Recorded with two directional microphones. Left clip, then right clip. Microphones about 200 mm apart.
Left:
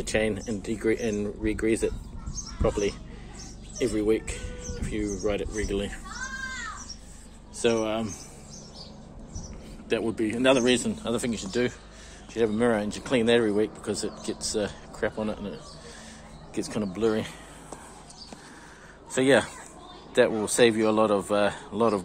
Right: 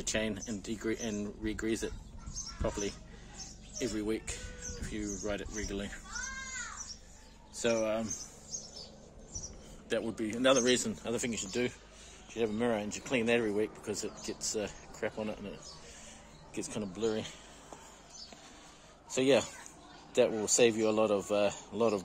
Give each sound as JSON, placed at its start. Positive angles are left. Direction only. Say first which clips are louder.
{"t": 0.0, "sound": "speech", "louder": "left 8 dB", "side_deg": -10}
{"t": 7.5, "sound": "speech", "louder": "left 6 dB", "side_deg": -10}
{"t": 9.8, "sound": "speech", "louder": "left 8 dB", "side_deg": -20}
{"t": 19.1, "sound": "speech", "louder": "left 6 dB", "side_deg": -15}